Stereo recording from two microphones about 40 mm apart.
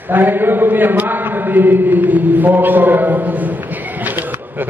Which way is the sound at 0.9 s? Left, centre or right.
Right.